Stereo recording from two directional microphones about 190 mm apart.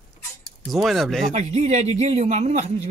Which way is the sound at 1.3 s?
35° right (ahead or behind).